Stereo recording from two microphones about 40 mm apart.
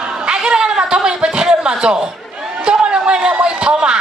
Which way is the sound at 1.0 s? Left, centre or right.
Centre.